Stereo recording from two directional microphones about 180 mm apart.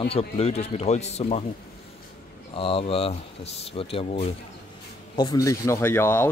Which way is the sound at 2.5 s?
30° left (ahead or behind).